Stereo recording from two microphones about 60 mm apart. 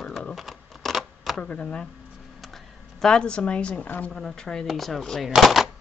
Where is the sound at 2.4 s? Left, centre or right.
Centre.